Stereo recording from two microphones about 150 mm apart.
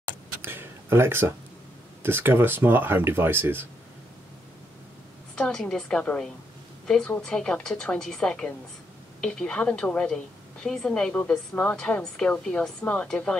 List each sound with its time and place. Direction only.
0.4 s a sound: 15° right (ahead or behind)
2.0 s speech: 15° right (ahead or behind)
5.3 s a woman's voice: 5° left (ahead or behind)